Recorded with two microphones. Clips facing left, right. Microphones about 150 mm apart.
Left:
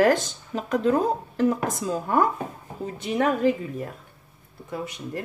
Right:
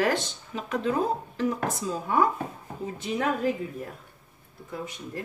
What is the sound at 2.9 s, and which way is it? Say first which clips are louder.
Speech: left 5 dB; 70° left (ahead or behind).